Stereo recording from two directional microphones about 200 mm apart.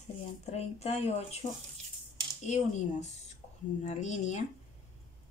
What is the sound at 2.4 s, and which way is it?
Speech, 35° left (ahead or behind).